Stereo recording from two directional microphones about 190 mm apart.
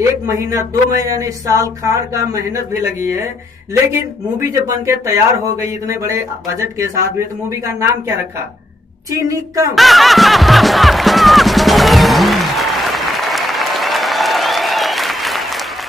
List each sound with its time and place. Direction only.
0.3 s speech: 15° right (ahead or behind)
9.1 s speech: 20° right (ahead or behind)
9.8 s music: centre (ahead or behind)